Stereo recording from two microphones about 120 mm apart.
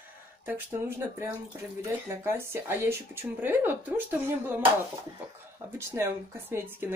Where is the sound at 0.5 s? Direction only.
20° right (ahead or behind).